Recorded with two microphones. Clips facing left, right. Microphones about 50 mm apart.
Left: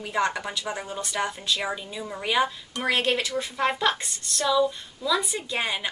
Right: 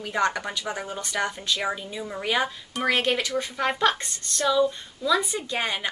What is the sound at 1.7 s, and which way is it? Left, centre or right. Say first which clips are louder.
A woman's voice: right 2 dB; centre.